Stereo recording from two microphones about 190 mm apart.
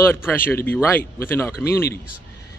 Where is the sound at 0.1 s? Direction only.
10° left (ahead or behind).